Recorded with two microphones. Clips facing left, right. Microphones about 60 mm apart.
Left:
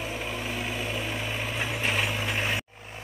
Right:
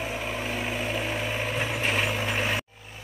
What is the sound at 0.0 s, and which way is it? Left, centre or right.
Vehicle, centre.